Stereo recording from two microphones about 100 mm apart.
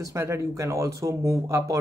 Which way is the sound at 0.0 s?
30° right (ahead or behind).